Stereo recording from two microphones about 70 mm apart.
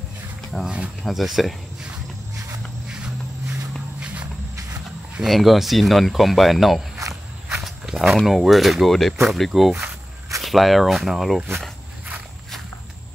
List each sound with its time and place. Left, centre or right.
1.0 s speech: centre
4.0 s walk: centre
5.2 s speech: centre
7.0 s walk: right
7.6 s walk: centre
8.3 s speech: centre